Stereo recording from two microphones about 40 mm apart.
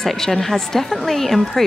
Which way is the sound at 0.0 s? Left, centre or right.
Centre.